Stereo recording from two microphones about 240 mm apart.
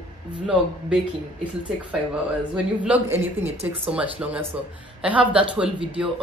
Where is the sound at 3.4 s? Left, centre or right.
Right.